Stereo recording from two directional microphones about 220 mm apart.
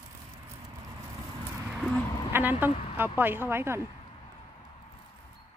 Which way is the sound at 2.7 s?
25° left (ahead or behind).